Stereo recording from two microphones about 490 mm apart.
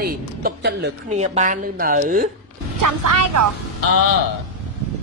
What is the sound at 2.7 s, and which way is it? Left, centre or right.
Speech, right.